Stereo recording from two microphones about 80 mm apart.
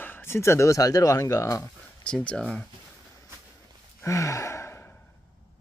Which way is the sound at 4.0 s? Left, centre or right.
Left.